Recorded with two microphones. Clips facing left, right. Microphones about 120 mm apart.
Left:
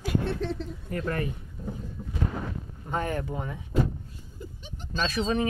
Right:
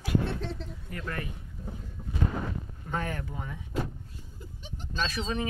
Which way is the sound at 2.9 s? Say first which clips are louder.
Left 4 dB; 25° left (ahead or behind).